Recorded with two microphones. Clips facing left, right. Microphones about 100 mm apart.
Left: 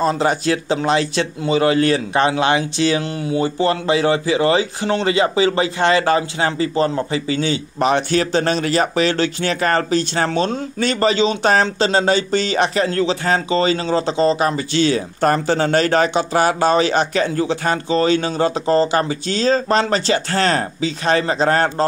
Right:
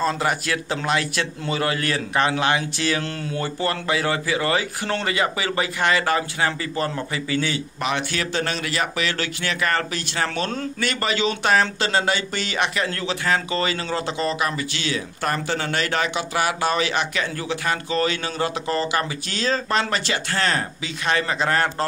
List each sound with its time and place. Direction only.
0.0 s a man's voice: 25° left (ahead or behind)